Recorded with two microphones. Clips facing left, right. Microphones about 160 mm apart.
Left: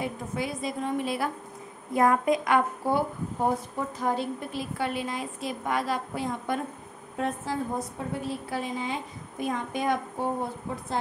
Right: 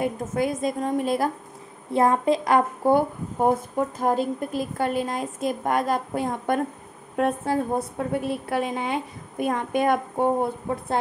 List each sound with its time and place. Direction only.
0.0 s a woman's voice: 45° right (ahead or behind)
1.9 s a woman's voice: 30° right (ahead or behind); by 11.0 s 55° right (ahead or behind)